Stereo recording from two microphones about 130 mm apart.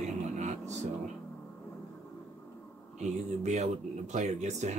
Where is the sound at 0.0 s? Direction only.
65° right (ahead or behind).